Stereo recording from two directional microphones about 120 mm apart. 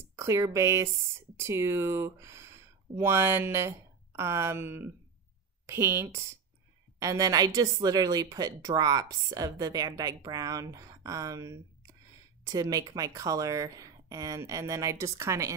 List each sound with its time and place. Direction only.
0.1 s a woman's voice: 25° right (ahead or behind)